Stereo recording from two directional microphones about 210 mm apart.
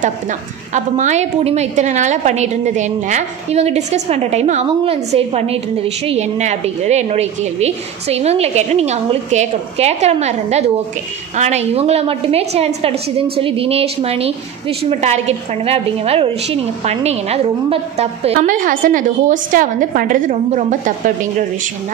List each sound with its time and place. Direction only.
0.0 s a woman's voice: 35° right (ahead or behind)